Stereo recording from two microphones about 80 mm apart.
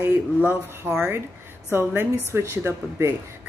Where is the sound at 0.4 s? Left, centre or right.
Right.